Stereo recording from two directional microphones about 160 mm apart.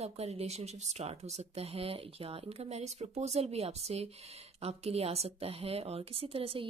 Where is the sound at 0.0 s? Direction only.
40° right (ahead or behind).